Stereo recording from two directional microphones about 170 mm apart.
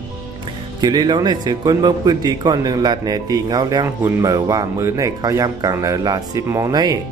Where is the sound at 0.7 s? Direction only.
25° right (ahead or behind).